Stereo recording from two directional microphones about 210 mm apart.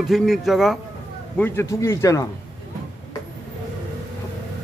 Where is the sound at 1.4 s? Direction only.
15° left (ahead or behind).